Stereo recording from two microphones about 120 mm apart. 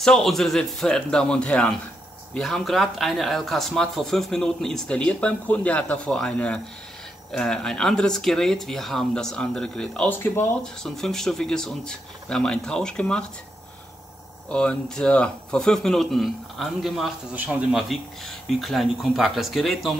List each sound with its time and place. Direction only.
0.0 s speech: 5° left (ahead or behind)
10.1 s speech: 20° left (ahead or behind)
10.6 s speech: 5° left (ahead or behind)
14.5 s speech: 10° left (ahead or behind)